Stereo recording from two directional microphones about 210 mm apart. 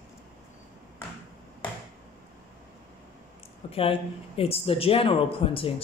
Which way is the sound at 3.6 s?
25° left (ahead or behind).